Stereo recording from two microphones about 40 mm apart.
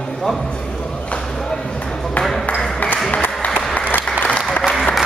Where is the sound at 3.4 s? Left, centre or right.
Left.